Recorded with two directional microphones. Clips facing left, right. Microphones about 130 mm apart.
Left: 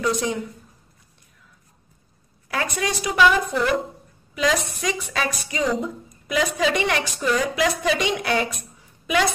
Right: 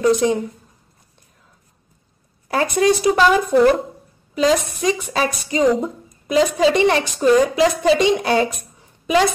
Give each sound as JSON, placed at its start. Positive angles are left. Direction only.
{"t": 0.2, "sound": "a woman's voice", "side_deg": -30}
{"t": 2.4, "sound": "a woman's voice", "side_deg": -35}